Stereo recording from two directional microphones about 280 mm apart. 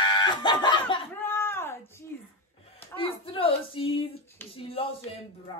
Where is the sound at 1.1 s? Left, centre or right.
Centre.